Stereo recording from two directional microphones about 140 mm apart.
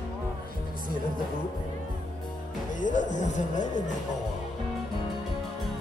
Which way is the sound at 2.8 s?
60° left (ahead or behind).